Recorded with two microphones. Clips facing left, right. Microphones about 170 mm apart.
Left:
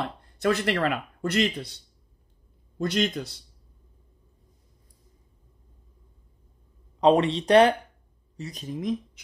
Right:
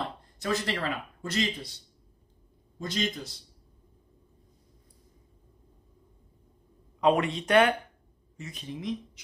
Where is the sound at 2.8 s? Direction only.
65° left (ahead or behind).